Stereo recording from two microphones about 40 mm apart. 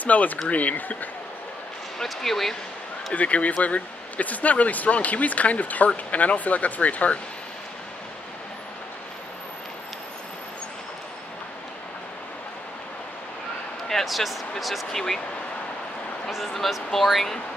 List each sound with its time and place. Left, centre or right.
0.0 s speech: left
2.0 s speech: centre
3.1 s speech: left
14.0 s speech: centre
14.9 s speech: centre
16.3 s speech: centre